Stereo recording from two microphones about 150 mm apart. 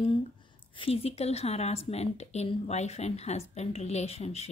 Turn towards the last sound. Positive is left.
turn(degrees=45)  # may be behind; listen again after turning